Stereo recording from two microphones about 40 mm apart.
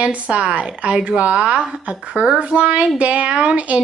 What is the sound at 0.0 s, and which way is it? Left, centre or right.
Speech, right.